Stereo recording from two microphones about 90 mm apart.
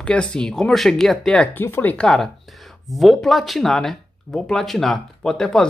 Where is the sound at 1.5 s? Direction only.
25° left (ahead or behind).